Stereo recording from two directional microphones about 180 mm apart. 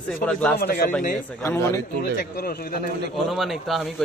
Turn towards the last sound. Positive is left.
turn(degrees=0)  # may be behind; listen again after turning